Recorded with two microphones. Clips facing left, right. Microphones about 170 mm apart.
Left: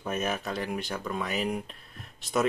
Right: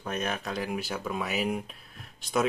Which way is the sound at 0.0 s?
5° left (ahead or behind).